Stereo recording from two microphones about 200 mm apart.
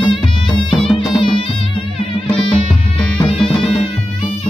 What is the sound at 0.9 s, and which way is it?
Music, 25° left (ahead or behind).